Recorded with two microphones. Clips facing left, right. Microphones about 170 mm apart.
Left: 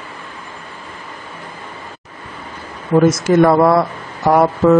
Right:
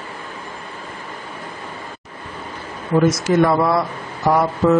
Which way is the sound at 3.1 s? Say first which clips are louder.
Left 4 dB; 55° left (ahead or behind).